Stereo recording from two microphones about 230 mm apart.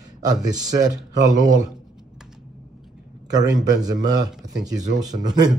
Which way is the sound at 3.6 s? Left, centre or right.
Centre.